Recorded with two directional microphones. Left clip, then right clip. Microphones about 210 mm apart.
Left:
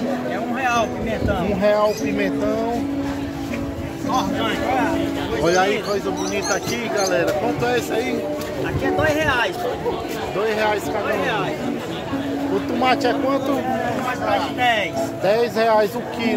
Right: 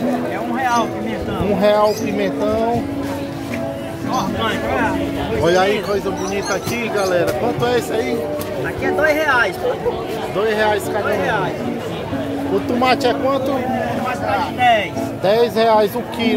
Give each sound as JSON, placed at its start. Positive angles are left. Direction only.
{"t": 1.6, "sound": "speech", "side_deg": -10}
{"t": 5.4, "sound": "speech", "side_deg": -5}
{"t": 9.1, "sound": "speech", "side_deg": 0}
{"t": 10.5, "sound": "speech", "side_deg": -10}
{"t": 12.8, "sound": "speech", "side_deg": -15}
{"t": 14.6, "sound": "speech", "side_deg": 20}
{"t": 15.2, "sound": "speech", "side_deg": -5}